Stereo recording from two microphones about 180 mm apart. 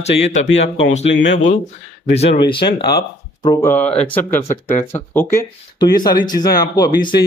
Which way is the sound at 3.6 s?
10° left (ahead or behind).